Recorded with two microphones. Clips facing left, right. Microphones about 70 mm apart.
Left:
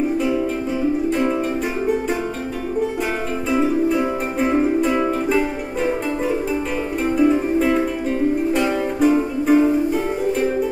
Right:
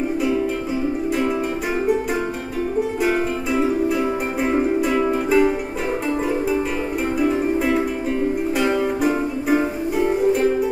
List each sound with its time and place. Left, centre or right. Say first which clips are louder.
4.4 s music: left 2 dB; centre
7.2 s music: left 4 dB; centre
9.0 s music: left 4 dB; centre